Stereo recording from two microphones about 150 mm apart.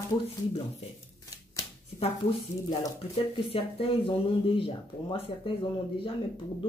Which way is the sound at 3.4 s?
40° left (ahead or behind).